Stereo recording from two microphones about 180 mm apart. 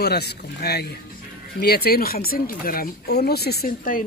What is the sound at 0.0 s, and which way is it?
Speech, 65° left (ahead or behind).